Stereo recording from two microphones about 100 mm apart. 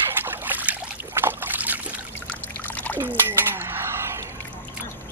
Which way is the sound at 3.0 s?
20° right (ahead or behind).